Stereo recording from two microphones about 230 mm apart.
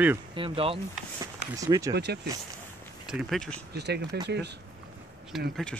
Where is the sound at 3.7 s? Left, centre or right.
Right.